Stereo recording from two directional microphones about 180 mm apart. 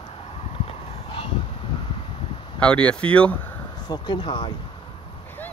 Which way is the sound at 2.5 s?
5° left (ahead or behind).